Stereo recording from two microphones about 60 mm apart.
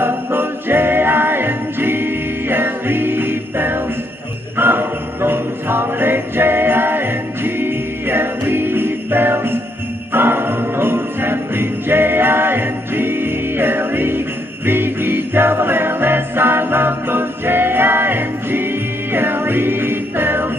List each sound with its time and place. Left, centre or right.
0.0 s music: right
4.6 s jingle bell: right
14.7 s music: right